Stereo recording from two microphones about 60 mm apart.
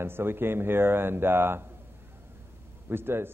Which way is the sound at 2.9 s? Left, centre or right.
Right.